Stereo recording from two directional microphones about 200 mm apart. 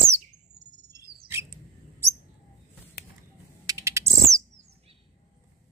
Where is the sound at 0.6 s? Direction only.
35° right (ahead or behind).